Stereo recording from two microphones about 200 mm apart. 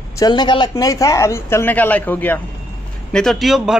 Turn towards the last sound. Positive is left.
turn(degrees=0)  # may be behind; listen again after turning